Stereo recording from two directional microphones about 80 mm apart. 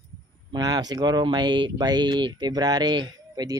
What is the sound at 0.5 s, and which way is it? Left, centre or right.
Speech, right.